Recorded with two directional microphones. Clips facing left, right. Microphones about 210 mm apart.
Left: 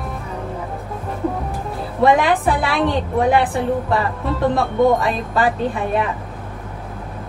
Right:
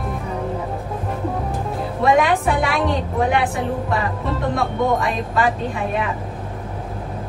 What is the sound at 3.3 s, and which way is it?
Speech, 35° left (ahead or behind).